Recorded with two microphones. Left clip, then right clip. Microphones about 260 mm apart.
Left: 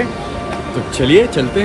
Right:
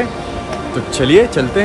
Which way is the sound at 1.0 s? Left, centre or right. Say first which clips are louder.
Right 1 dB; right.